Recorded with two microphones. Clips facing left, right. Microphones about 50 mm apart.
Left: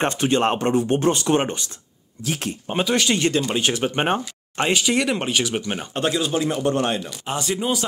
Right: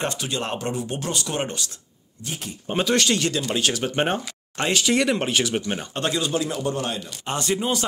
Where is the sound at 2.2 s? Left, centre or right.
Left.